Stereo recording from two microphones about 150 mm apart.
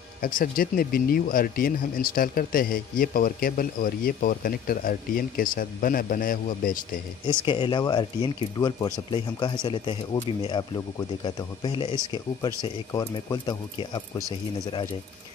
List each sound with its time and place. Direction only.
0.2 s speech: 65° left (ahead or behind)
7.4 s speech: 35° left (ahead or behind)